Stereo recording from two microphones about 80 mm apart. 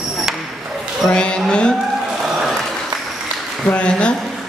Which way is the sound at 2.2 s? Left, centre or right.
Centre.